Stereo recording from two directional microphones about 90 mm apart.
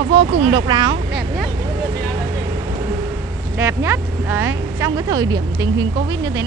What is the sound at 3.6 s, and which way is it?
Speech, 30° right (ahead or behind).